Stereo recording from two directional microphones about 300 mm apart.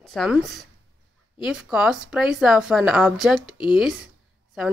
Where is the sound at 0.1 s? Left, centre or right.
Centre.